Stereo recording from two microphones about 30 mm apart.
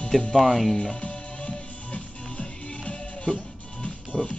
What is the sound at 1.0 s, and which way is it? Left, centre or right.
Music, left.